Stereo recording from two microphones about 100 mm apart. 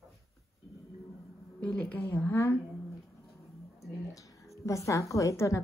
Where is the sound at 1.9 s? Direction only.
25° left (ahead or behind).